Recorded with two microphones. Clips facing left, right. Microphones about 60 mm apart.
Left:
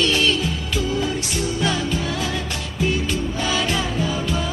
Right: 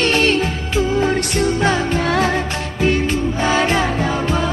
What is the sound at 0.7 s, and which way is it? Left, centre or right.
Music, right.